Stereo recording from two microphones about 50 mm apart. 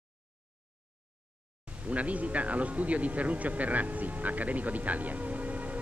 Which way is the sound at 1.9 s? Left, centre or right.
Right.